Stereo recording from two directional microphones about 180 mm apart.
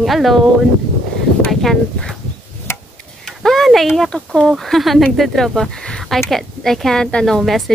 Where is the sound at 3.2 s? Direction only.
Centre (ahead or behind).